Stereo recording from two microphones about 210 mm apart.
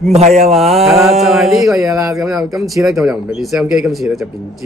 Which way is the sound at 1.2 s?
Centre (ahead or behind).